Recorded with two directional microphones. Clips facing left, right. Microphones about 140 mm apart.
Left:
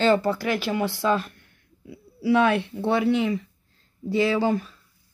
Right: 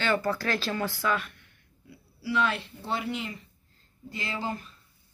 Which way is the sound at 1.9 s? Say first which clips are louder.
Left 11 dB; 60° left (ahead or behind).